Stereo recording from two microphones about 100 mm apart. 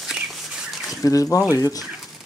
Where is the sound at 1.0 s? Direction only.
35° left (ahead or behind).